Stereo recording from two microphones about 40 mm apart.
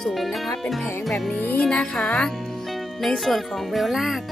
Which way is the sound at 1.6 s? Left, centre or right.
Left.